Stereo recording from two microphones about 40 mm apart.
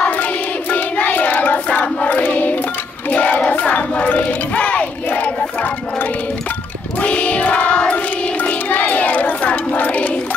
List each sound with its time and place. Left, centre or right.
0.0 s a sound: left
3.1 s music: left
4.6 s crowd: left
7.0 s child singing: left
7.9 s music: left
9.8 s a sound: left